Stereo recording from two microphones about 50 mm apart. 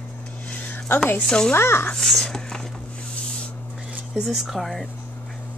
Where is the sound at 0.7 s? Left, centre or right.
Left.